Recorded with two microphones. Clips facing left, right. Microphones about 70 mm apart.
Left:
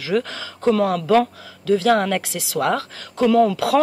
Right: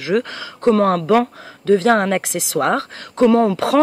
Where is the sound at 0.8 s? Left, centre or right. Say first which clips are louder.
Right 2 dB; right.